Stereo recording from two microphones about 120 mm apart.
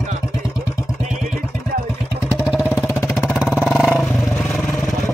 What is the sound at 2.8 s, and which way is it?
Vehicle, 20° left (ahead or behind).